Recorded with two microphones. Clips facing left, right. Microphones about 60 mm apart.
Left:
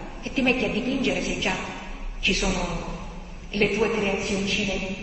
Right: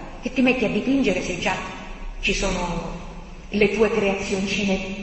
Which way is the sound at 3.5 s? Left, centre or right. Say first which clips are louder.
Right 4 dB; right.